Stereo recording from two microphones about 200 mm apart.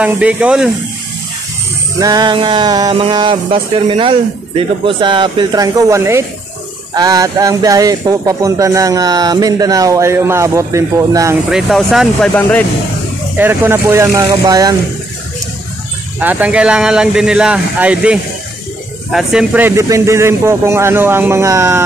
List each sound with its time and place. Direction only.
0.0 s speech: 5° right (ahead or behind)
2.0 s music: 20° right (ahead or behind)
7.0 s speech: 20° right (ahead or behind)
11.5 s speech: centre (ahead or behind)
13.4 s speech: 10° right (ahead or behind)
16.2 s speech: 10° right (ahead or behind)